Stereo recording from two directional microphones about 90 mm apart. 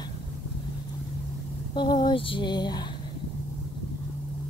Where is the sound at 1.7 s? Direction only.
55° left (ahead or behind).